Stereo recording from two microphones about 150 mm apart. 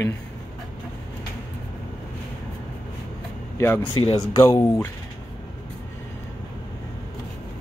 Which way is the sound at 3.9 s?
35° left (ahead or behind).